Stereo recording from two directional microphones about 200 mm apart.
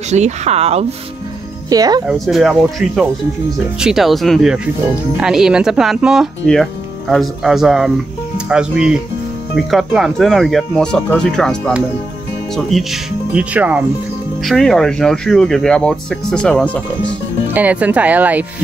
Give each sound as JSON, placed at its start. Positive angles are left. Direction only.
{"t": 0.1, "sound": "speech", "side_deg": -35}
{"t": 1.7, "sound": "speech", "side_deg": -20}
{"t": 2.0, "sound": "speech", "side_deg": 0}
{"t": 3.8, "sound": "speech", "side_deg": 0}
{"t": 17.6, "sound": "speech", "side_deg": -5}